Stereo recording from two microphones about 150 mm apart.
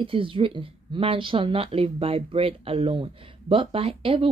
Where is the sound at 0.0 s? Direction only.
35° right (ahead or behind).